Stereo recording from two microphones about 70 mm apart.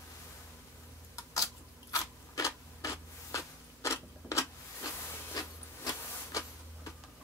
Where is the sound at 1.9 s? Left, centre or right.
Left.